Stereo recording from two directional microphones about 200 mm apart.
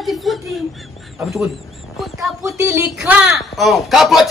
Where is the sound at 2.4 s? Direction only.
15° right (ahead or behind).